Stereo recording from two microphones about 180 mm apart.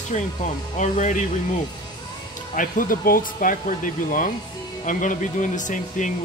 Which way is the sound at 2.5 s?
50° left (ahead or behind).